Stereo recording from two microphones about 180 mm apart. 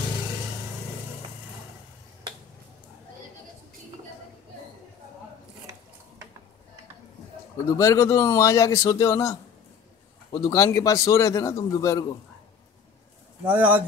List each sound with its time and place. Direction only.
7.7 s a man's voice: 15° left (ahead or behind)
13.5 s a man's voice: 10° right (ahead or behind)